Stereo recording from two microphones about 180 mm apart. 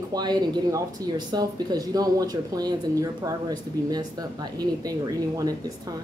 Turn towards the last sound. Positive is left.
turn(degrees=-20)  # may be behind; listen again after turning